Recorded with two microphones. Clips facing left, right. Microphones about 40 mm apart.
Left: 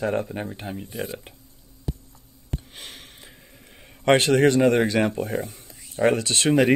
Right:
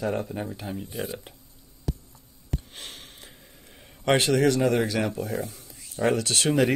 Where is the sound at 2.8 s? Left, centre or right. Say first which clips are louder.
Left 1 dB; centre.